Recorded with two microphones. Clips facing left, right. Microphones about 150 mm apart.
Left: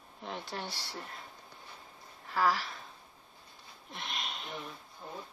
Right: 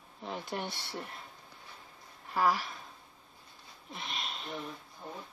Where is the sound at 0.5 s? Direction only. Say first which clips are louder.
Right 3 dB; 20° right (ahead or behind).